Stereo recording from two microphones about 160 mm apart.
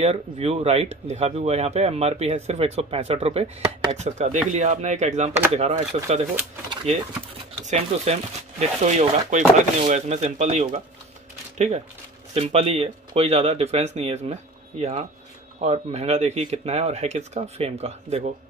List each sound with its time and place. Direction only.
0.0 s speech: 40° right (ahead or behind)
6.9 s speech: 45° right (ahead or behind)